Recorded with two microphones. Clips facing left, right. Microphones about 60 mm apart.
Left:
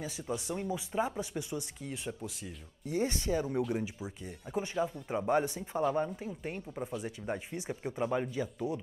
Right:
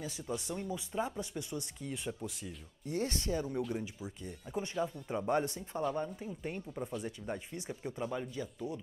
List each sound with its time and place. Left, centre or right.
0.0 s speech: centre
8.0 s speech: left